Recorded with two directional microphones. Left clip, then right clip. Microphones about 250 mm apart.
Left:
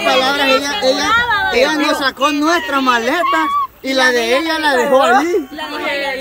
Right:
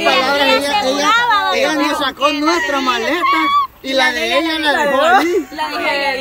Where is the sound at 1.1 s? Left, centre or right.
Right.